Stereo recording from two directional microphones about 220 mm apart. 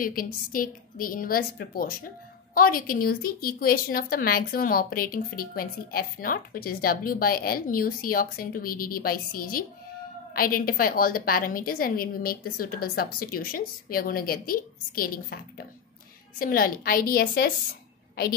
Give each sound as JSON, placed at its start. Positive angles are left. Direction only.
{"t": 0.0, "sound": "a woman's voice", "side_deg": 40}